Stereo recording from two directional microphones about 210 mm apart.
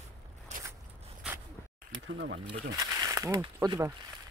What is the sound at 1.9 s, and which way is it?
Bee, 65° right (ahead or behind).